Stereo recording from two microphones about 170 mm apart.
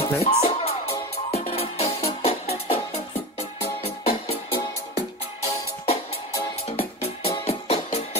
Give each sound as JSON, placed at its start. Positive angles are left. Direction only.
{"t": 0.0, "sound": "music", "side_deg": 35}
{"t": 6.8, "sound": "music", "side_deg": 35}